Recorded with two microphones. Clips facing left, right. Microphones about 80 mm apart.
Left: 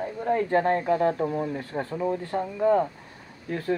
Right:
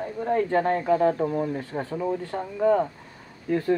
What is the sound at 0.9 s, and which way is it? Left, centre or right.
Speech, centre.